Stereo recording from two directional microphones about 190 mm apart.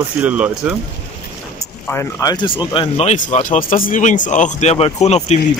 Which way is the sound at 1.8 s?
15° left (ahead or behind).